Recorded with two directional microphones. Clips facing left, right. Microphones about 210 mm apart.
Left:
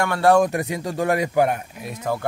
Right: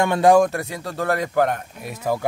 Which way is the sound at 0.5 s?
15° left (ahead or behind).